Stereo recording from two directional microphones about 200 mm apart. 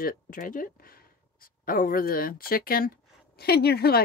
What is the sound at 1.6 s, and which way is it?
Speech, 45° left (ahead or behind).